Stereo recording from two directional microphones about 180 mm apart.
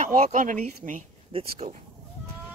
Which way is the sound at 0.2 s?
45° right (ahead or behind).